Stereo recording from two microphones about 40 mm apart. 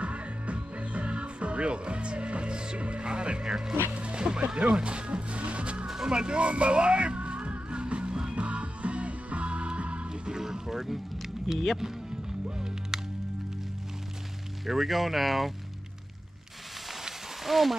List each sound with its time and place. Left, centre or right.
0.0 s music: right
2.8 s speech: right
3.4 s speech: centre
3.9 s speech: right
6.0 s music: right
10.3 s music: centre
11.5 s speech: centre
12.4 s music: centre
14.7 s speech: centre
17.0 s a sound: centre